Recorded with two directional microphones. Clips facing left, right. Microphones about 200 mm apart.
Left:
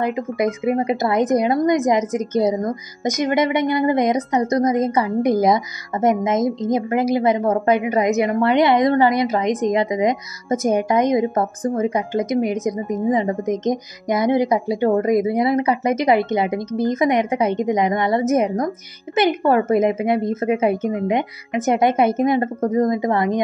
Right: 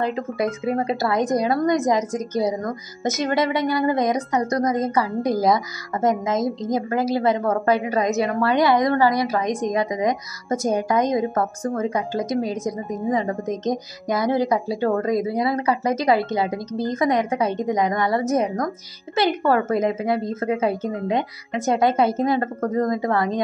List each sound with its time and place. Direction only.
0.0 s a woman's voice: 15° left (ahead or behind)